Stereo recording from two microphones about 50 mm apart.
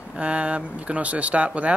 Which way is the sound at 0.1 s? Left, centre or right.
Right.